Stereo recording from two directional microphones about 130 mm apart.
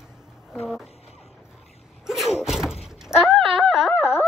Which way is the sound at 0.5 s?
5° right (ahead or behind).